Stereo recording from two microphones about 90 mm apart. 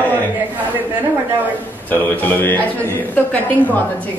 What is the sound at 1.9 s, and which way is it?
A man's voice, 20° left (ahead or behind).